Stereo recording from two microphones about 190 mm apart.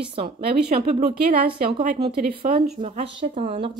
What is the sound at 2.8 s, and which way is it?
Speech, 30° right (ahead or behind).